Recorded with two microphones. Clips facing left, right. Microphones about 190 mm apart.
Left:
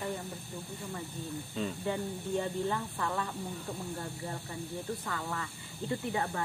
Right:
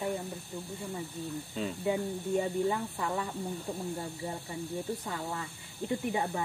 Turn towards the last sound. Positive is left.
turn(degrees=-15)  # may be behind; listen again after turning